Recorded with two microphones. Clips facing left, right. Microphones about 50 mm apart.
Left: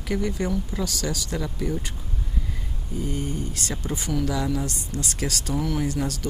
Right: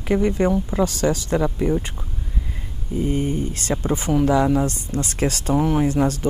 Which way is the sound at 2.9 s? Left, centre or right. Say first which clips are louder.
Right 7 dB; right.